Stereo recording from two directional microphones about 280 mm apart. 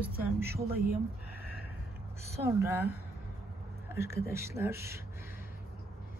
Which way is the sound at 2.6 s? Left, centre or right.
Centre.